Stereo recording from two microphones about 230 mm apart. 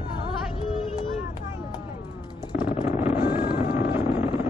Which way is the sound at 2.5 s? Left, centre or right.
Centre.